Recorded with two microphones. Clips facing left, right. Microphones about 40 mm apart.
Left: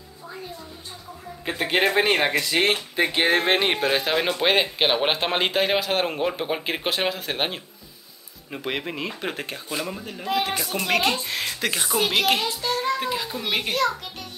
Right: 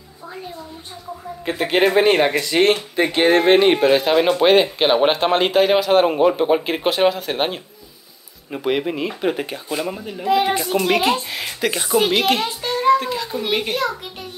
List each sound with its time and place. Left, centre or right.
1.4 s a child's voice: centre
10.3 s speech: right
10.8 s speech: centre
13.0 s a child's voice: centre